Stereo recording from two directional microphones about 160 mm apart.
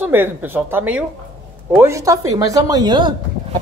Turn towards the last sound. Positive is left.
turn(degrees=-30)  # may be behind; listen again after turning